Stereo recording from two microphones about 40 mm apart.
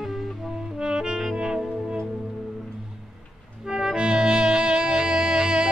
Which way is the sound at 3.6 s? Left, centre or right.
Centre.